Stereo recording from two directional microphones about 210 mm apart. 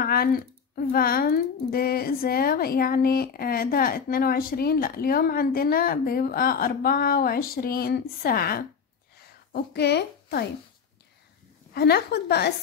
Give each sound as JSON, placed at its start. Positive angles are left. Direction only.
{"t": 0.0, "sound": "a sound", "side_deg": 45}
{"t": 0.7, "sound": "a woman's voice", "side_deg": 45}
{"t": 11.7, "sound": "a woman's voice", "side_deg": 50}